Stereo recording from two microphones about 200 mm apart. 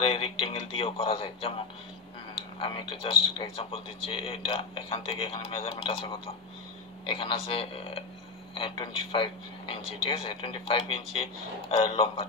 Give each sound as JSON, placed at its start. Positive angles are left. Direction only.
{"t": 0.0, "sound": "speech", "side_deg": 30}
{"t": 2.6, "sound": "speech", "side_deg": 25}